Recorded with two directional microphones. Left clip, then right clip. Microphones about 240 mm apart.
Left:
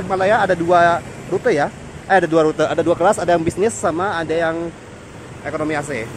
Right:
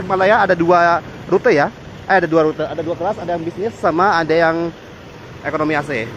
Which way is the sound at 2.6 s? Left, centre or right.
Centre.